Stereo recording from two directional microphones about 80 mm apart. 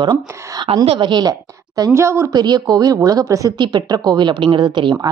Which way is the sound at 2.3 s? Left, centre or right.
Right.